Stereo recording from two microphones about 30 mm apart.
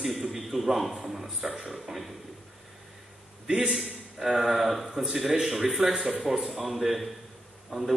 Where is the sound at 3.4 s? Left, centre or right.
Right.